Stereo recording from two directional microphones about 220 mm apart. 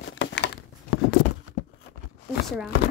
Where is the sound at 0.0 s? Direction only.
55° left (ahead or behind).